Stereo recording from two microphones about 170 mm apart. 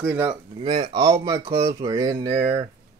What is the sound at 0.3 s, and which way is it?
Speech, 30° right (ahead or behind).